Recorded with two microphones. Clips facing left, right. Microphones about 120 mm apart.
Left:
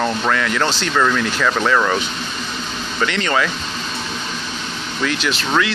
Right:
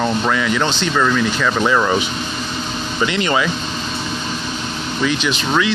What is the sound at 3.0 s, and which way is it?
Speech, 10° right (ahead or behind).